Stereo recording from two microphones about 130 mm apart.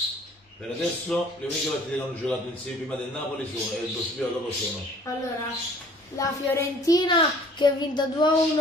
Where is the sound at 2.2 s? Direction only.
5° left (ahead or behind).